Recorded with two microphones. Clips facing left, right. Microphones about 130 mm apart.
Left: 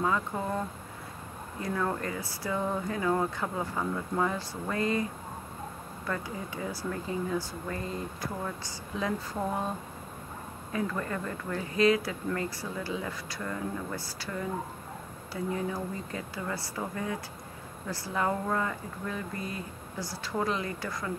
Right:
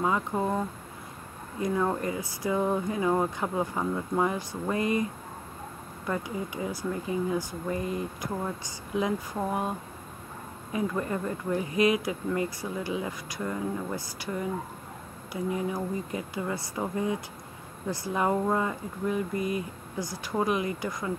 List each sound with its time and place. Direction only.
0.0 s speech: 20° right (ahead or behind)
1.6 s speech: 15° right (ahead or behind)
6.0 s speech: 15° right (ahead or behind)
15.5 s speech: 15° right (ahead or behind)